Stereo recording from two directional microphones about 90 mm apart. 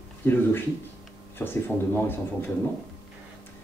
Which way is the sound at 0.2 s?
20° left (ahead or behind).